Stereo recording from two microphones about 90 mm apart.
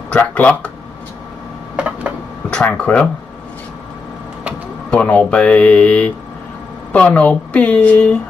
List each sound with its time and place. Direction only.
0.3 s a woman's voice: 15° left (ahead or behind)
1.8 s a sound: 15° right (ahead or behind)
2.5 s a woman's voice: 10° left (ahead or behind)
4.9 s a woman's voice: 10° left (ahead or behind)